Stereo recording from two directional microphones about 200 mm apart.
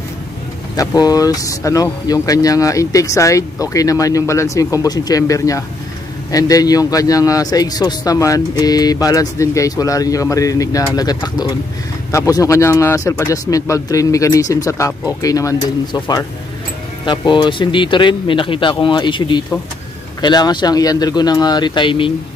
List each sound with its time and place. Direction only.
0.7 s a man's voice: 20° left (ahead or behind)